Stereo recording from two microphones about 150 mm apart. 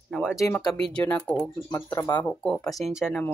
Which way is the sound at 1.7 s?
20° left (ahead or behind).